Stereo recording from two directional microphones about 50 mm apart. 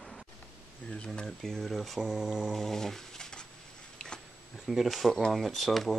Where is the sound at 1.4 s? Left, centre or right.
Centre.